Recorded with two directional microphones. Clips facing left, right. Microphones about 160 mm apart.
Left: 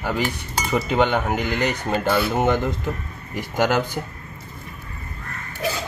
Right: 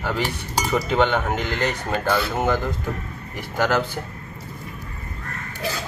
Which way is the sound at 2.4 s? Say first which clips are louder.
Left 2 dB; 25° left (ahead or behind).